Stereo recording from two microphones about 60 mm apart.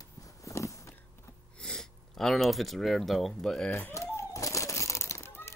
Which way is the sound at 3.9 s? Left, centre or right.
Left.